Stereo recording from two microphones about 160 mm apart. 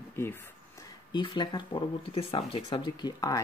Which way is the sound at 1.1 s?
30° left (ahead or behind).